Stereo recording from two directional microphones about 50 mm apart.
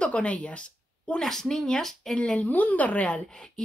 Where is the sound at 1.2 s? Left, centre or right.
Centre.